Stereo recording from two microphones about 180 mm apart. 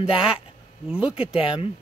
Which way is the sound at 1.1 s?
30° left (ahead or behind).